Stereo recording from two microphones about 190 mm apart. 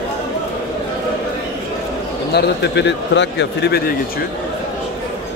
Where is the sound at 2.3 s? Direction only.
65° left (ahead or behind).